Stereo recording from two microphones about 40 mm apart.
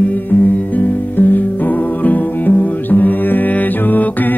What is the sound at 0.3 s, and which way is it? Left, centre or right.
Music, left.